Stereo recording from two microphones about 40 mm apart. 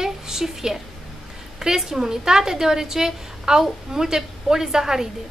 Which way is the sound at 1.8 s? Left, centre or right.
Centre.